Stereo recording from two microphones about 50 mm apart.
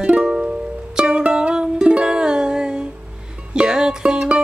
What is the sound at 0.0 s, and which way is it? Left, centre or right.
Music, centre.